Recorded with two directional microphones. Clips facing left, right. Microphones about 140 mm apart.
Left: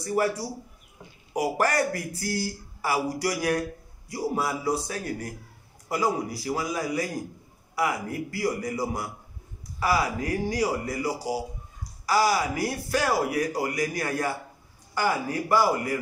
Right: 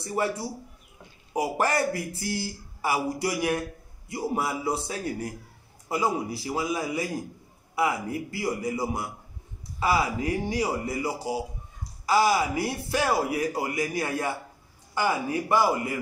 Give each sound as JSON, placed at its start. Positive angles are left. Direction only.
{"t": 0.0, "sound": "speech", "side_deg": -25}